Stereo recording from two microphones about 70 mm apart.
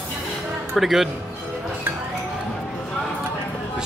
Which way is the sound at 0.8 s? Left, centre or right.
Centre.